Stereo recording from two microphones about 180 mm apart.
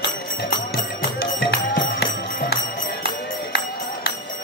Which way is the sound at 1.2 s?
65° left (ahead or behind).